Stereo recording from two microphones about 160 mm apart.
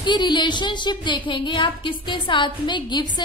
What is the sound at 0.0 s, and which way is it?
A woman's voice, 30° left (ahead or behind).